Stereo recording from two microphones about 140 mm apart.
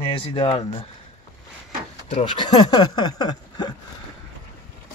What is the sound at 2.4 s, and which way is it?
Speech, 30° left (ahead or behind).